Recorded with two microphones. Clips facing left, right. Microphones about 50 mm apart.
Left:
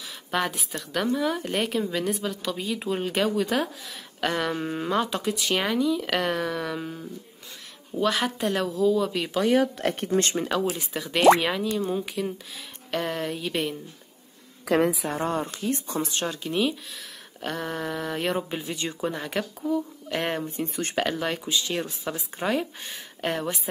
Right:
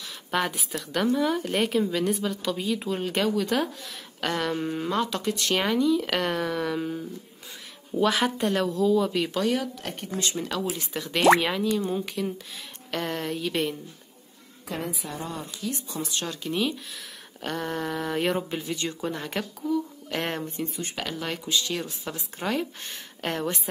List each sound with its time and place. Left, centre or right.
0.3 s a woman's voice: centre
9.8 s speech: left
10.5 s a woman's voice: centre
14.7 s a woman's voice: left
15.0 s speech: left
16.4 s a woman's voice: centre
18.6 s speech: centre
19.0 s a woman's voice: centre
20.4 s speech: left
22.4 s a woman's voice: centre